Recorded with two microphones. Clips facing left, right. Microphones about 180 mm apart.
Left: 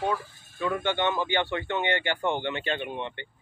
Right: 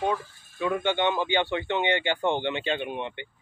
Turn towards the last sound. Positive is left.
turn(degrees=-15)  # may be behind; listen again after turning